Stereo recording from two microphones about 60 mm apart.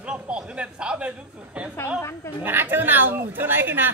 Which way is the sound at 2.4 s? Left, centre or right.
Right.